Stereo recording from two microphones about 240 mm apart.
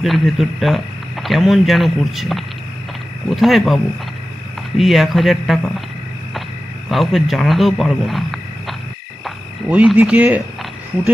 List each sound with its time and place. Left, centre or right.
0.0 s speech: centre
6.9 s speech: centre
9.2 s frog: centre